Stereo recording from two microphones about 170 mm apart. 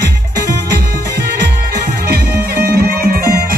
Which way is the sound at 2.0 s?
70° right (ahead or behind).